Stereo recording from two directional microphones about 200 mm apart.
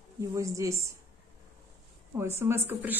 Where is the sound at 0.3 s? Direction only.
15° right (ahead or behind).